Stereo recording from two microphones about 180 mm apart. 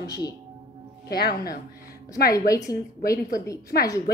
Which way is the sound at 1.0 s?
65° left (ahead or behind).